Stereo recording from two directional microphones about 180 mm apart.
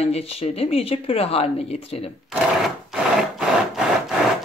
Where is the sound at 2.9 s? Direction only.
5° right (ahead or behind).